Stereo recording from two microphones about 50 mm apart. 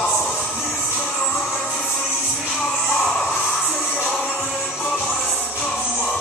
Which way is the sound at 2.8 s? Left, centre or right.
Centre.